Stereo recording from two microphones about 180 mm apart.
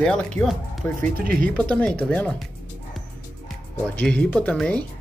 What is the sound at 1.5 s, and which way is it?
Speech, 5° left (ahead or behind).